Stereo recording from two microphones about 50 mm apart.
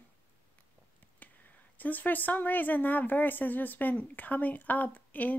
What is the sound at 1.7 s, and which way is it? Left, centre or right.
Speech, left.